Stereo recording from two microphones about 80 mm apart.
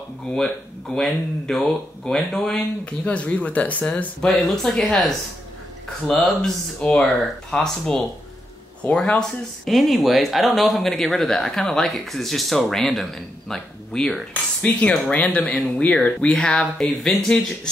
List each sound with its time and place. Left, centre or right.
0.3 s speech: centre
4.3 s speech: centre
6.3 s speech: centre
14.6 s speech: centre